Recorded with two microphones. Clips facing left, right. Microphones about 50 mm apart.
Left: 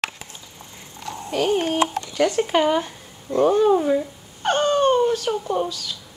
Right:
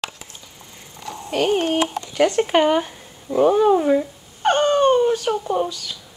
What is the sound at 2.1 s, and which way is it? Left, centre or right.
Speech, centre.